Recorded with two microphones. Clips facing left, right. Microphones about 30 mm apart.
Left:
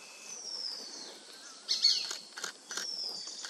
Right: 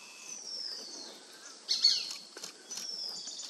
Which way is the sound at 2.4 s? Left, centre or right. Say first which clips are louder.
Left 5 dB; left.